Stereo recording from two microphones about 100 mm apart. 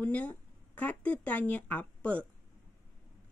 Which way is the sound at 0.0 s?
15° left (ahead or behind).